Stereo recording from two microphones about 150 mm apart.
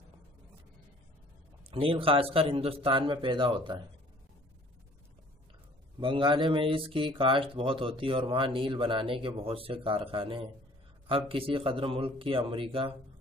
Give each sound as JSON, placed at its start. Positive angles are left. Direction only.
{"t": 1.7, "sound": "speech", "side_deg": -40}
{"t": 5.9, "sound": "speech", "side_deg": -35}